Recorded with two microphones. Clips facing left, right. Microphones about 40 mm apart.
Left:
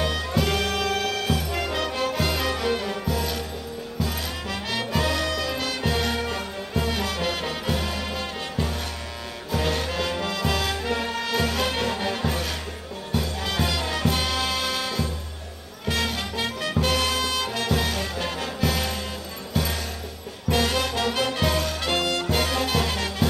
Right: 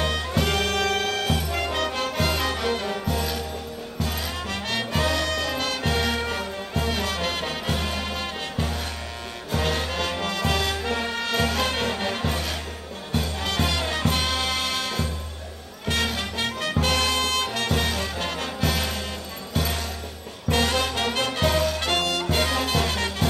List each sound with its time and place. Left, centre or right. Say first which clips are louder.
0.0 s music: even; centre
0.7 s music: right 1 dB; right
1.5 s music: right 1 dB; centre
11.4 s music: even; centre
15.8 s music: right 1 dB; centre
20.4 s music: even; centre